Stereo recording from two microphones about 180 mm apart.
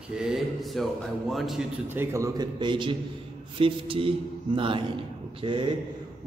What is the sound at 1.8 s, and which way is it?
A man's voice, 15° right (ahead or behind).